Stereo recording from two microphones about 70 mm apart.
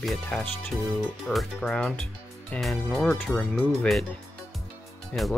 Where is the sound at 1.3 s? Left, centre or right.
Left.